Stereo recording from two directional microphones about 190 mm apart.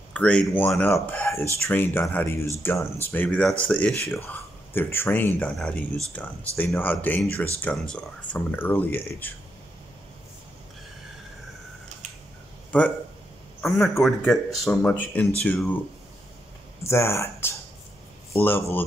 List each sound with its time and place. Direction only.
0.1 s speech: 5° left (ahead or behind)
12.7 s a man's voice: 5° left (ahead or behind)
16.8 s speech: 15° left (ahead or behind)